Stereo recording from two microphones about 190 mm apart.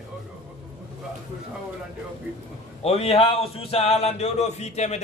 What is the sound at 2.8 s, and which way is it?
Speech, 35° left (ahead or behind).